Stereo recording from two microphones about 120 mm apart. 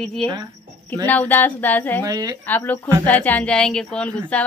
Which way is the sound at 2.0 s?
30° right (ahead or behind).